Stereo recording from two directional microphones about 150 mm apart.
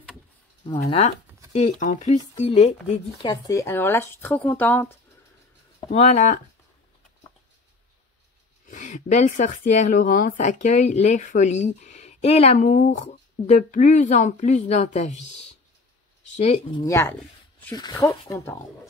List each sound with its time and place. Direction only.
0.8 s speech: 40° left (ahead or behind)
1.8 s speech: 55° left (ahead or behind)
3.3 s speech: 20° left (ahead or behind)
5.9 s speech: 45° left (ahead or behind)
8.6 s speech: 55° left (ahead or behind)
16.8 s speech: 20° left (ahead or behind)